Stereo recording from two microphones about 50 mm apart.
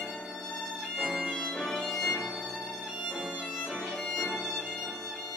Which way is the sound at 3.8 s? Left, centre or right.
Centre.